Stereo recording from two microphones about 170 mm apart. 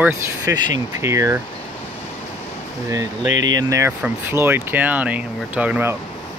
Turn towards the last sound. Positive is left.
turn(degrees=-10)  # may be behind; listen again after turning